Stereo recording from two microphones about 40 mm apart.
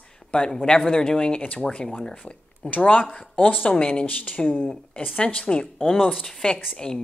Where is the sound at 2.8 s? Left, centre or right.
Left.